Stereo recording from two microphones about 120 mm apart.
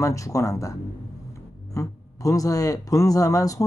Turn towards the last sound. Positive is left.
turn(degrees=30)  # may be behind; listen again after turning